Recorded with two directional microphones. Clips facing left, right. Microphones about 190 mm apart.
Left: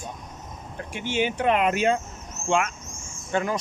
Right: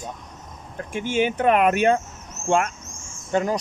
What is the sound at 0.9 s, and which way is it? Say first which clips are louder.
Speech: right 4 dB; 50° right (ahead or behind).